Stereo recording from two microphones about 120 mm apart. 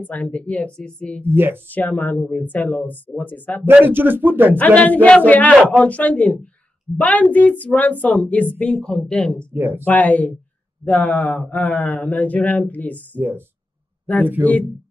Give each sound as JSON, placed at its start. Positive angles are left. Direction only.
{"t": 0.0, "sound": "speech", "side_deg": 10}
{"t": 1.2, "sound": "speech", "side_deg": -15}
{"t": 1.7, "sound": "speech", "side_deg": 15}
{"t": 3.6, "sound": "speech", "side_deg": -15}
{"t": 4.6, "sound": "speech", "side_deg": 10}
{"t": 9.5, "sound": "speech", "side_deg": -15}
{"t": 9.8, "sound": "speech", "side_deg": 15}